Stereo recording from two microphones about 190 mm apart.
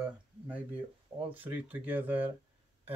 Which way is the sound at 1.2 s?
10° right (ahead or behind).